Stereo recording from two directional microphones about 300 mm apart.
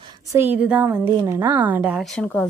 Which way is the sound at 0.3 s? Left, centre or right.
Centre.